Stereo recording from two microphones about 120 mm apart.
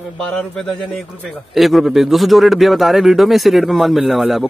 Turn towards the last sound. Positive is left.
turn(degrees=0)  # may be behind; listen again after turning